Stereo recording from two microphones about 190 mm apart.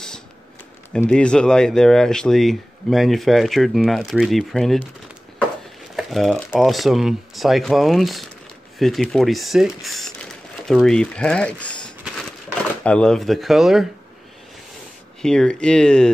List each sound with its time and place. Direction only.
0.9 s speech: 5° left (ahead or behind)
5.9 s speech: centre (ahead or behind)
12.0 s crumpling: 5° left (ahead or behind)
15.2 s speech: 5° left (ahead or behind)